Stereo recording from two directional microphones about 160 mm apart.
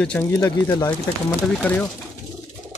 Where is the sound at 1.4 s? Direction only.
5° left (ahead or behind).